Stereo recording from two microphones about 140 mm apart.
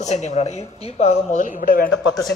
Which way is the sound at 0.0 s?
55° left (ahead or behind).